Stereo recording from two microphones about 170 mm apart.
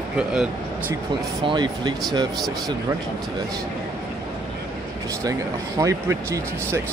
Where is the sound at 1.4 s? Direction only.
25° right (ahead or behind).